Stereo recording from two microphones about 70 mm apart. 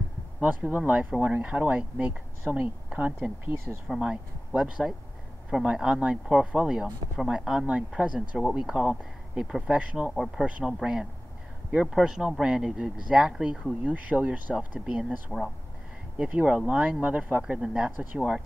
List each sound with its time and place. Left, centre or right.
0.4 s speech: right
10.1 s speech: centre
10.4 s speech: centre
13.8 s speech: right
16.2 s speech: centre